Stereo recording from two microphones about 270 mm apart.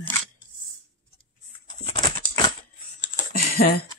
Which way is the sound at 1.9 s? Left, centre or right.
Centre.